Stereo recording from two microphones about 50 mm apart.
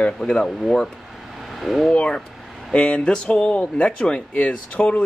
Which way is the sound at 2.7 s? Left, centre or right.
Left.